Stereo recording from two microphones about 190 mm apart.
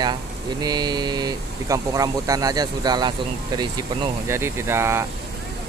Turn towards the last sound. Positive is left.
turn(degrees=-15)  # may be behind; listen again after turning